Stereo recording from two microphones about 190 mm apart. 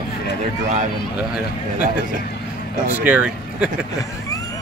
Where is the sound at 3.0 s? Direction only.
10° right (ahead or behind).